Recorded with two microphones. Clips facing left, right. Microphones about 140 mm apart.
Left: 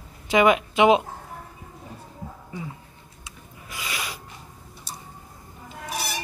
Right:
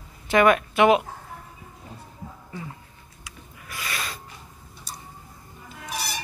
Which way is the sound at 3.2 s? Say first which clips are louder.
Even; 15° left (ahead or behind).